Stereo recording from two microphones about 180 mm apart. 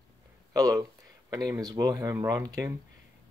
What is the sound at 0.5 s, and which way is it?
Speech, 20° right (ahead or behind).